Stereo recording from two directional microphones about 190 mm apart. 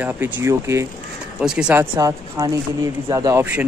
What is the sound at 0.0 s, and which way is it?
Speech, 10° right (ahead or behind).